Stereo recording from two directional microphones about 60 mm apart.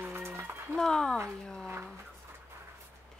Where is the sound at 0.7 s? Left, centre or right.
Centre.